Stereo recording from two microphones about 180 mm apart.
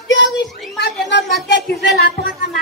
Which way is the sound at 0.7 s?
75° left (ahead or behind).